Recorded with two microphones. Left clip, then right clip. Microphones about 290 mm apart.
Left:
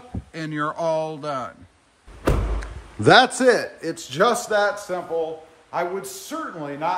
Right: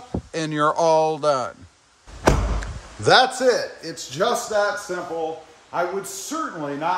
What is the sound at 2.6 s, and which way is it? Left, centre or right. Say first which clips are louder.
Speech: left 6 dB; left.